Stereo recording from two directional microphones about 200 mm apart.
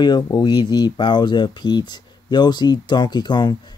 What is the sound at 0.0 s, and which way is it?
Speech, 20° left (ahead or behind).